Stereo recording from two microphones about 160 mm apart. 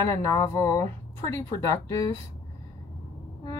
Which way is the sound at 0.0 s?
20° left (ahead or behind).